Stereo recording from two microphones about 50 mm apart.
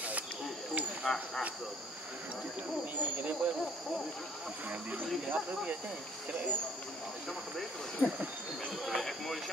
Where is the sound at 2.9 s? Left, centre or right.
Right.